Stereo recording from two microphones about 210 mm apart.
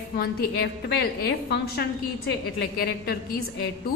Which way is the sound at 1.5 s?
50° left (ahead or behind).